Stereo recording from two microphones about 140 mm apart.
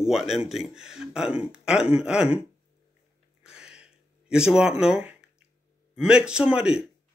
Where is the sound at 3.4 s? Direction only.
5° right (ahead or behind).